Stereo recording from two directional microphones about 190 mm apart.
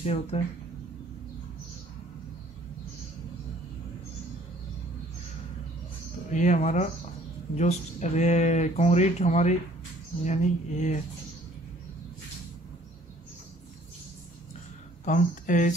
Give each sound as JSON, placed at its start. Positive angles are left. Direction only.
{"t": 0.0, "sound": "speech", "side_deg": 30}
{"t": 6.3, "sound": "speech", "side_deg": 40}
{"t": 15.0, "sound": "speech", "side_deg": 45}